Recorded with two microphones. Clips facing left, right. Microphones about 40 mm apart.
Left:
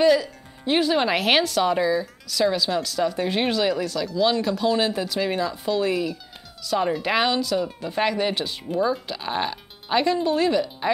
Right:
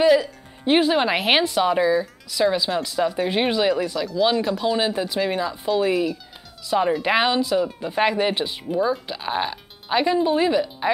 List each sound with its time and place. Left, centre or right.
0.0 s music: centre
0.7 s speech: right
8.6 s speech: centre